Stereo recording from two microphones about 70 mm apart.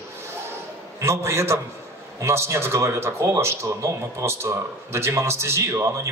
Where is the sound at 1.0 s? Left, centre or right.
Right.